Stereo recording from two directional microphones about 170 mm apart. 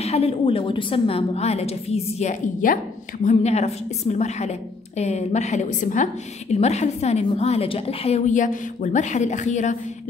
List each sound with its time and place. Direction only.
0.0 s a woman's voice: 35° left (ahead or behind)